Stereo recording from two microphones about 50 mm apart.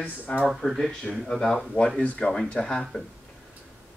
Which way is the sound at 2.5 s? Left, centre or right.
Centre.